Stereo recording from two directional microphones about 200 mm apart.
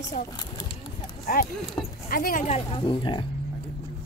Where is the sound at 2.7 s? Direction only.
25° left (ahead or behind).